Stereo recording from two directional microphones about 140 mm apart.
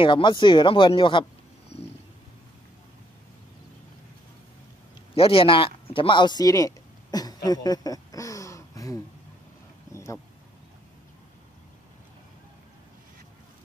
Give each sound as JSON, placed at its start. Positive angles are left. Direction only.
{"t": 0.0, "sound": "speech", "side_deg": 35}
{"t": 5.1, "sound": "speech", "side_deg": 40}